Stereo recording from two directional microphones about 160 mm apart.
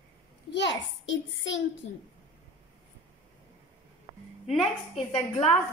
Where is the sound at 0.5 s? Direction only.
90° left.